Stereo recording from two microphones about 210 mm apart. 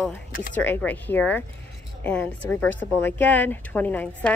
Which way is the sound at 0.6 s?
5° left (ahead or behind).